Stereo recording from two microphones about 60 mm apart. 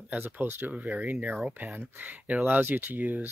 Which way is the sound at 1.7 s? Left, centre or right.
Right.